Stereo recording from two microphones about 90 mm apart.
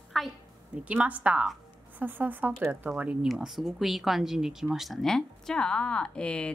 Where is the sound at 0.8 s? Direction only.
15° right (ahead or behind).